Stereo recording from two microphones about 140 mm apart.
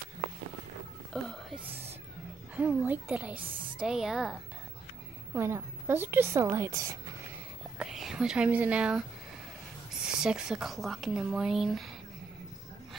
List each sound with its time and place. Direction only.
1.1 s speech: 5° left (ahead or behind)
2.5 s a woman's voice: 10° right (ahead or behind)
5.3 s a woman's voice: 15° right (ahead or behind)
7.8 s speech: 5° right (ahead or behind)
10.0 s speech: 5° right (ahead or behind)